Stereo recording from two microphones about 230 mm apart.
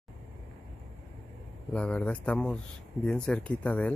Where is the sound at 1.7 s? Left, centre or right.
Centre.